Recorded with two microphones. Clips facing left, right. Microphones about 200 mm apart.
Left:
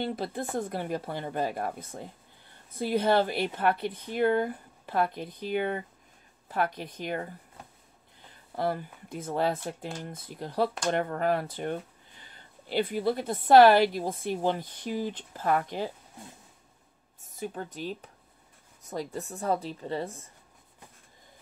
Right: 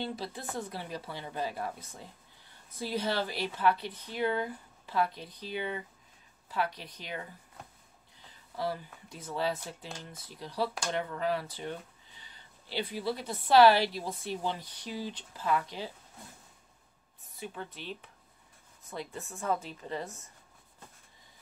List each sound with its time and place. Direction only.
0.0 s speech: 55° left (ahead or behind)
8.5 s speech: 55° left (ahead or behind)
17.4 s a woman's voice: 45° left (ahead or behind)